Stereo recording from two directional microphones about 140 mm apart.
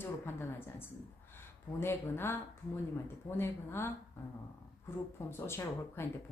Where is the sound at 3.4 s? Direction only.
15° left (ahead or behind).